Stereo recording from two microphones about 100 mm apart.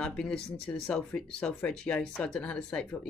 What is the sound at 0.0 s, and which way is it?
Speech, 10° left (ahead or behind).